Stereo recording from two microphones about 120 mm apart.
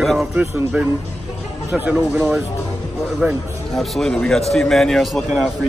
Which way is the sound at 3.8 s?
5° left (ahead or behind).